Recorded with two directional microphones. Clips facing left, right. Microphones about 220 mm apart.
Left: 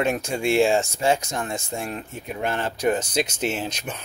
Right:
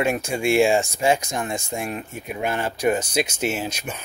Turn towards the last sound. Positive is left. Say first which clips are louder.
# right 1 dB
turn(degrees=-10)  # may be behind; listen again after turning